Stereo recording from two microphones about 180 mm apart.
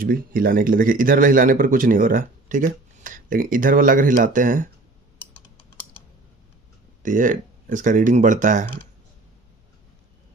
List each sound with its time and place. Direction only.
0.0 s a man's voice: 55° right (ahead or behind)
7.0 s speech: 45° right (ahead or behind)